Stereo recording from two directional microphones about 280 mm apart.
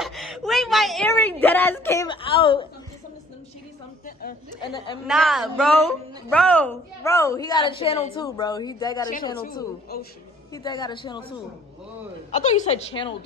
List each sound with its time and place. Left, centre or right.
0.0 s a sound: centre
4.0 s a sound: left
5.0 s a man's voice: centre
9.9 s a man's voice: left
10.5 s a woman's voice: centre
12.3 s a woman's voice: left